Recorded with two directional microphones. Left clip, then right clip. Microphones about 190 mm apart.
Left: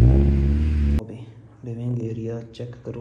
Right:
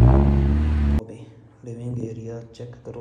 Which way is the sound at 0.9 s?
Centre (ahead or behind).